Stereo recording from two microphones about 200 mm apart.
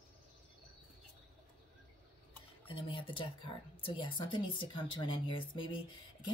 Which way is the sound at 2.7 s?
25° left (ahead or behind).